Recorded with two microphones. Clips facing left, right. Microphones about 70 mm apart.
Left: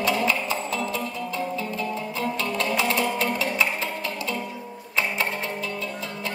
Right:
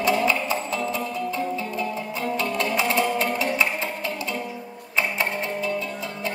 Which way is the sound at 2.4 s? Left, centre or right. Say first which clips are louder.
Right 1 dB; right.